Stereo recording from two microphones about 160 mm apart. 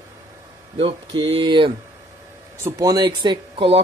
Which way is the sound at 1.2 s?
35° right (ahead or behind).